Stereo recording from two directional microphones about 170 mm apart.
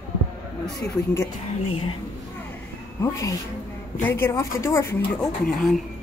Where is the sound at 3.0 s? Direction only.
20° left (ahead or behind).